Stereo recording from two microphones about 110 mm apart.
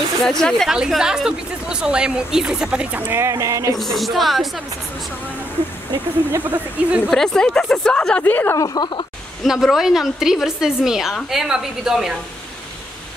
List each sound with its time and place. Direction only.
0.2 s a woman's voice: 5° left (ahead or behind); by 3.7 s 30° right (ahead or behind)
3.7 s a woman's voice: centre (ahead or behind)
6.3 s a woman's voice: 15° right (ahead or behind)
7.1 s a woman's voice: 5° left (ahead or behind)
8.5 s speech: 40° left (ahead or behind)
9.4 s a woman's voice: centre (ahead or behind)